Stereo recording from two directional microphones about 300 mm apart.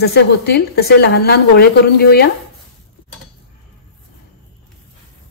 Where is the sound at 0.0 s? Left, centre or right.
Left.